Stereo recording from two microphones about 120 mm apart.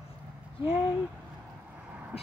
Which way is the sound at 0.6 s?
55° left (ahead or behind).